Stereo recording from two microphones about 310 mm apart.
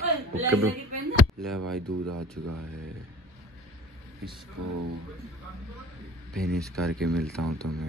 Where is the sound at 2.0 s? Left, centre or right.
Right.